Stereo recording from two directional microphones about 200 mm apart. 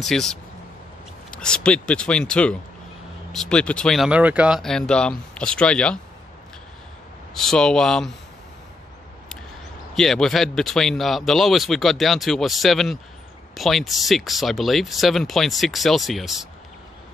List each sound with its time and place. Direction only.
0.0 s speech: centre (ahead or behind)
7.3 s speech: 5° left (ahead or behind)
9.9 s speech: centre (ahead or behind)